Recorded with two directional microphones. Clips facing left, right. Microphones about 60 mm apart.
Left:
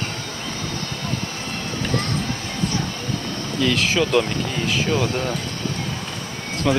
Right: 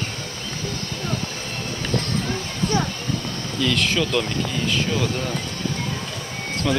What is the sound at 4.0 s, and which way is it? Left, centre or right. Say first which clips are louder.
Speech: left 4 dB; centre.